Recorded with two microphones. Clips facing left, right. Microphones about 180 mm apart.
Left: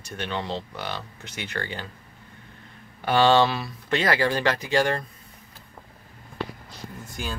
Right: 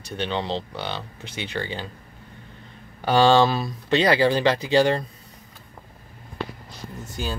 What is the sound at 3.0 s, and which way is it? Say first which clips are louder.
Speech: right 2 dB; 35° right (ahead or behind).